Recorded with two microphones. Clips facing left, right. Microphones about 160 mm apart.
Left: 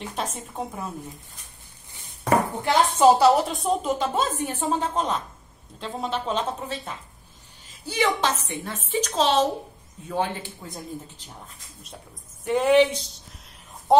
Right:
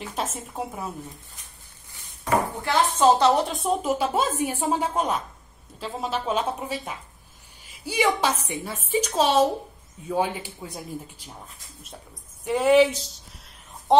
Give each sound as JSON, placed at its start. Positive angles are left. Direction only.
{"t": 0.0, "sound": "a woman's voice", "side_deg": 0}
{"t": 2.6, "sound": "speech", "side_deg": 15}
{"t": 3.2, "sound": "a woman's voice", "side_deg": 5}
{"t": 12.4, "sound": "a woman's voice", "side_deg": 0}